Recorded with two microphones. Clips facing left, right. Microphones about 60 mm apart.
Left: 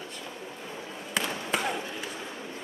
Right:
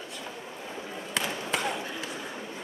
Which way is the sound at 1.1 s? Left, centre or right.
Centre.